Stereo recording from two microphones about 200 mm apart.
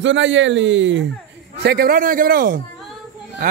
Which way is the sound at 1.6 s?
50° right (ahead or behind).